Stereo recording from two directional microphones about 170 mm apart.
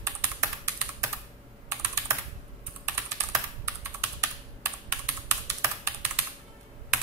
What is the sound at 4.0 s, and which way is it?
Computer keyboard, 15° right (ahead or behind).